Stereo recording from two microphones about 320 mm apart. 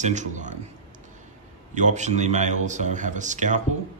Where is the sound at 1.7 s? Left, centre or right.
Right.